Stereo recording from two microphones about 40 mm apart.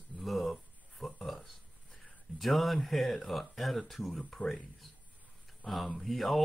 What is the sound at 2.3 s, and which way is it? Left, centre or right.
Speech, centre.